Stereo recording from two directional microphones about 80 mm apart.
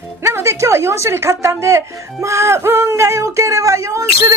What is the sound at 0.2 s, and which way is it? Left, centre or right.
Music, right.